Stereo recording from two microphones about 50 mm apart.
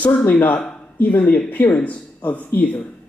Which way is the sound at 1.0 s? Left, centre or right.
Left.